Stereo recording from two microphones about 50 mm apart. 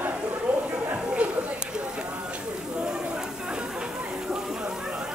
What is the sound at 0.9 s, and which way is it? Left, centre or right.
Chatter, right.